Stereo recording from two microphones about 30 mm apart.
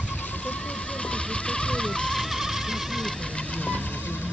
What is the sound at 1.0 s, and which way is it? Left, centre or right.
Vehicle, left.